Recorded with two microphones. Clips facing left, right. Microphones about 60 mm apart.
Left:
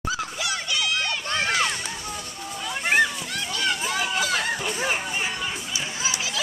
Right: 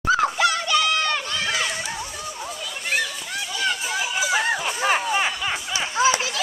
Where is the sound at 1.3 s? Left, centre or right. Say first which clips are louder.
Left 1 dB; left.